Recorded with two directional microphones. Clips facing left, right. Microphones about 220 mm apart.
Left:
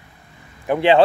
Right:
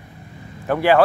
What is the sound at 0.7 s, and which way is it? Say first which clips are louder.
Speech: left 1 dB; 20° left (ahead or behind).